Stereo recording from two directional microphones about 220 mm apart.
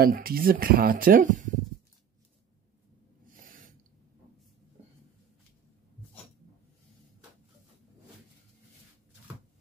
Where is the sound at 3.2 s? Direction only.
40° right (ahead or behind).